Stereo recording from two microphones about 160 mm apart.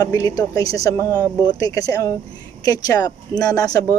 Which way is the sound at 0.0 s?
25° left (ahead or behind).